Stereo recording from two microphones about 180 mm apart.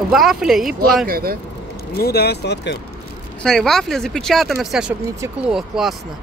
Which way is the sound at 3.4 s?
Centre (ahead or behind).